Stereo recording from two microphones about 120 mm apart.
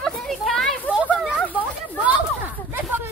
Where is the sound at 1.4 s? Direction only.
15° left (ahead or behind).